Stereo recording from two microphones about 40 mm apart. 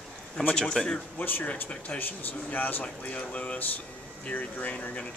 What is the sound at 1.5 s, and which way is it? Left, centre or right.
Speech, left.